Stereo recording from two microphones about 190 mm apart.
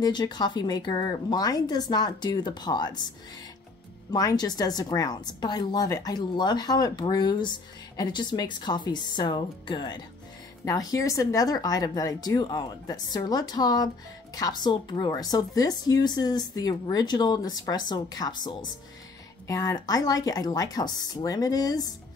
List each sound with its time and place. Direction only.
0.0 s a woman's voice: 25° left (ahead or behind)
4.1 s a woman's voice: 20° left (ahead or behind)